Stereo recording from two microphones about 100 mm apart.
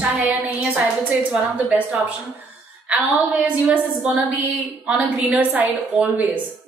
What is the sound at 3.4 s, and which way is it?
A woman's voice, 10° right (ahead or behind).